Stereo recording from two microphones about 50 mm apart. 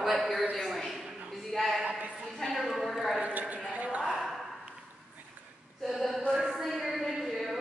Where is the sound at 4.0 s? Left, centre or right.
Centre.